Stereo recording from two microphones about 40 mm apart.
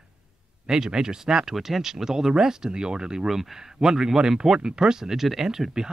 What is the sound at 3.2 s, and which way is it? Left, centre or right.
Speech, centre.